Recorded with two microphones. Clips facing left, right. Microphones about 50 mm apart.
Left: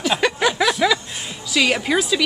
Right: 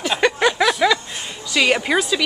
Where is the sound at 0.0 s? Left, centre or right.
Centre.